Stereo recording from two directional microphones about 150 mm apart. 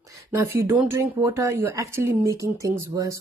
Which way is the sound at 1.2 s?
20° right (ahead or behind).